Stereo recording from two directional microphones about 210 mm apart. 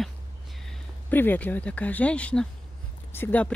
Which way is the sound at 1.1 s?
10° left (ahead or behind).